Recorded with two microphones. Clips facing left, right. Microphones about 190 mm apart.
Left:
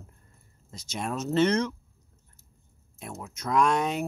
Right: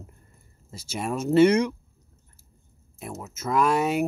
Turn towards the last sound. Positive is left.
turn(degrees=-5)  # may be behind; listen again after turning